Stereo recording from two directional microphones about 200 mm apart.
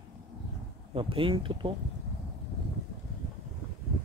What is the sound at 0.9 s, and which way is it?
Speech, 25° right (ahead or behind).